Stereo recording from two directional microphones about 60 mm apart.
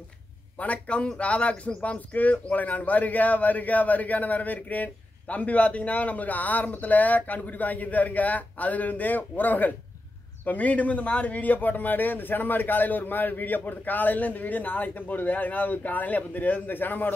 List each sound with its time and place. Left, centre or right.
0.6 s a man's voice: left